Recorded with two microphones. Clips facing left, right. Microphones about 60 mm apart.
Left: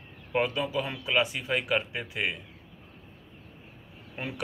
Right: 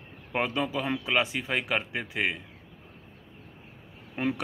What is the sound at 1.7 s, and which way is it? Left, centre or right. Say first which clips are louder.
Speech: left 1 dB; right.